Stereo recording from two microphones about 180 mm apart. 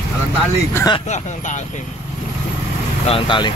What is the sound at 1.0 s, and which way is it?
Speech, 40° left (ahead or behind).